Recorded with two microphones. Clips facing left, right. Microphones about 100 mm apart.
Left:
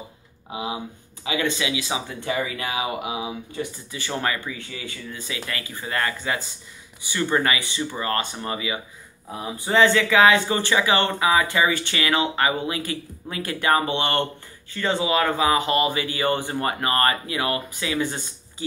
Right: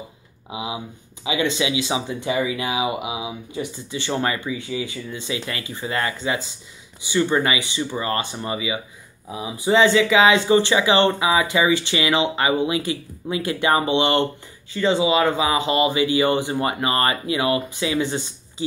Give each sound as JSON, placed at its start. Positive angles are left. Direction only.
{"t": 0.5, "sound": "speech", "side_deg": -15}
{"t": 3.9, "sound": "speech", "side_deg": -25}
{"t": 4.5, "sound": "speech", "side_deg": -15}